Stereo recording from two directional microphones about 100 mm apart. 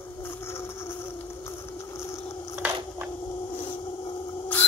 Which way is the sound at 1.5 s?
30° left (ahead or behind).